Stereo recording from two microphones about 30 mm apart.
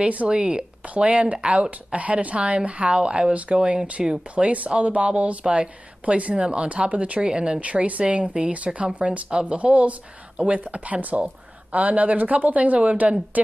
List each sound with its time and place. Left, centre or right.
0.3 s speech: right
2.0 s a woman's voice: right
7.2 s speech: right
7.7 s speech: right
8.0 s a woman's voice: right
9.3 s speech: right
10.7 s a woman's voice: right